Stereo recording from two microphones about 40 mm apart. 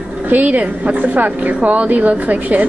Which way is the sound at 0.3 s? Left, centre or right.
Right.